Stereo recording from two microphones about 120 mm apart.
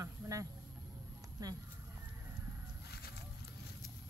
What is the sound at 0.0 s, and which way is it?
Vehicle, 30° right (ahead or behind).